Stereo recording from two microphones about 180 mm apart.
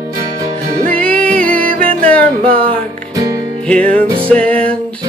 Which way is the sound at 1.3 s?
50° right (ahead or behind).